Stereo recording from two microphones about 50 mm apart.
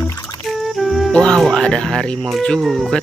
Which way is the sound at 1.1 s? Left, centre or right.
Centre.